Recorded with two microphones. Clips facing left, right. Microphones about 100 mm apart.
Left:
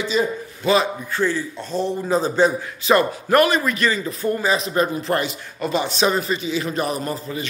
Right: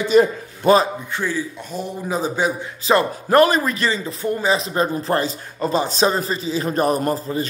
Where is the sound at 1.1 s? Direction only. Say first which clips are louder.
Left 6 dB; 10° right (ahead or behind).